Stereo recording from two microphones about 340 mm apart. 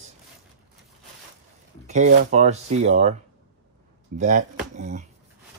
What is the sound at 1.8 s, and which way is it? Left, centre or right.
Speech, right.